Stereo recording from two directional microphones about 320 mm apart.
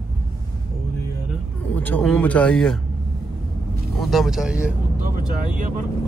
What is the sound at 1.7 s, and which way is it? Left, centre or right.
Speech, centre.